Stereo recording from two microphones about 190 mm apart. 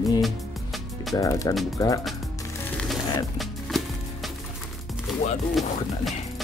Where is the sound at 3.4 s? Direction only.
Centre (ahead or behind).